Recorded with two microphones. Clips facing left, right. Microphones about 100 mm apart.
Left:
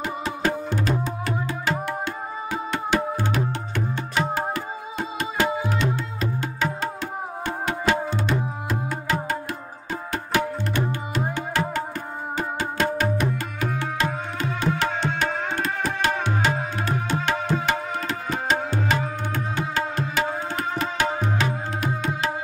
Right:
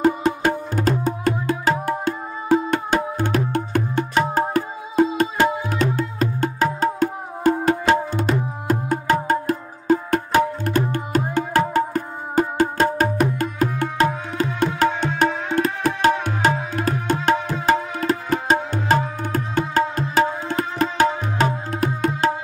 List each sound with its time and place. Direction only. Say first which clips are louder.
0.0 s music: right 8 dB; 45° right (ahead or behind)
17.6 s tabla: right 6 dB; 40° right (ahead or behind)